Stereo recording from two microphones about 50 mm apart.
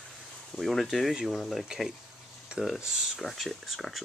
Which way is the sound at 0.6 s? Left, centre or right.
Centre.